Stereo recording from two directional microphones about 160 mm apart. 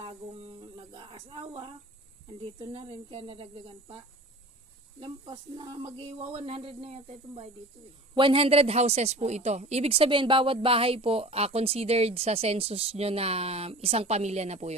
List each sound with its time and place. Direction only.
0.0 s a sound: 30° right (ahead or behind)
2.2 s speech: 35° right (ahead or behind)
5.0 s speech: 30° right (ahead or behind)